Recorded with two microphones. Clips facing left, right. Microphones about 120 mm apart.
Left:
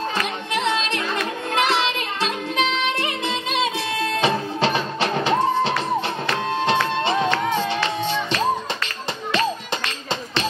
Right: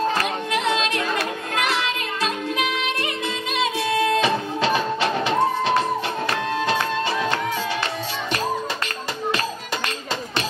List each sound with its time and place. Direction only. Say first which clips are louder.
1.6 s music: left 4 dB; 30° left (ahead or behind)
4.2 s music: left 1 dB; 30° left (ahead or behind)